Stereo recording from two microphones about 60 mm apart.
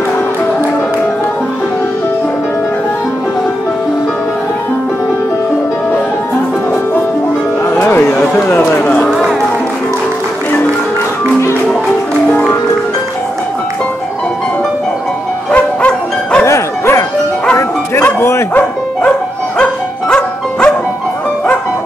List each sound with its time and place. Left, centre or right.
7.7 s music: left
8.4 s speech: left
8.8 s speech: centre
12.3 s music: left
15.5 s bow-wow: left
16.4 s dog: left
18.0 s bow-wow: left
19.6 s music: centre